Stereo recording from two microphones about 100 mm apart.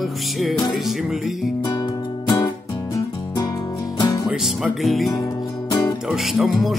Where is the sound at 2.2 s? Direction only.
40° left (ahead or behind).